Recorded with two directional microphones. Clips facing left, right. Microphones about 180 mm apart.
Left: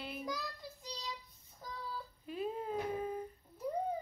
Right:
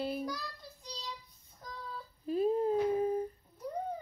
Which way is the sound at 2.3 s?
40° right (ahead or behind).